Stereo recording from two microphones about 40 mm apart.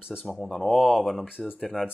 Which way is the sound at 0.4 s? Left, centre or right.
Centre.